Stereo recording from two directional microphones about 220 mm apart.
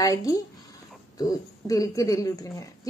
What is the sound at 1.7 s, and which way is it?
Speech, 15° left (ahead or behind).